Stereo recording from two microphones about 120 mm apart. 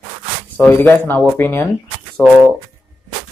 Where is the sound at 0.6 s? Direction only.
15° left (ahead or behind).